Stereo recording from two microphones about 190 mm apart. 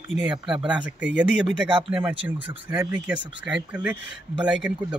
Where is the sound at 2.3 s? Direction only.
10° right (ahead or behind).